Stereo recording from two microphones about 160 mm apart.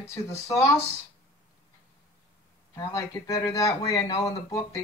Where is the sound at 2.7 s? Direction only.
20° left (ahead or behind).